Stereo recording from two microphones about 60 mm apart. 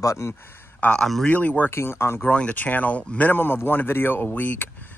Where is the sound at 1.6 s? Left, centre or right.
Left.